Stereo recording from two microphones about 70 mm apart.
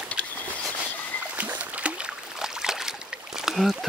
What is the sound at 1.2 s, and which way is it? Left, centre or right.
Boat, right.